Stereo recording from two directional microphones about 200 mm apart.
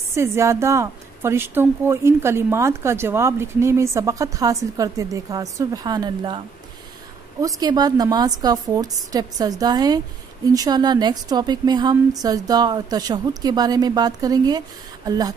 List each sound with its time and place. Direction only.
0.1 s a woman's voice: 15° right (ahead or behind)
7.4 s a woman's voice: 20° right (ahead or behind)